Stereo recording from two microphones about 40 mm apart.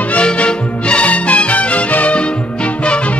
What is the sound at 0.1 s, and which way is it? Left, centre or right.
Music, left.